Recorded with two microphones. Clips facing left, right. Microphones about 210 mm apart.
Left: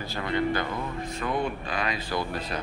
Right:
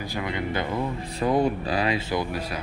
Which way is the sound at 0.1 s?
15° right (ahead or behind).